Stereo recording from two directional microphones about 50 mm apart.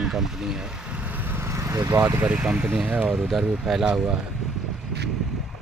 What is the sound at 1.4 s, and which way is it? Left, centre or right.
Vehicle, right.